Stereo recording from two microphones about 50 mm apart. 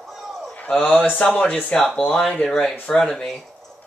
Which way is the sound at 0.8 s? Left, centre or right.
Left.